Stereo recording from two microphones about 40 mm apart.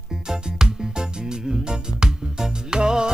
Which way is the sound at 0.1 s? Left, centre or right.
Centre.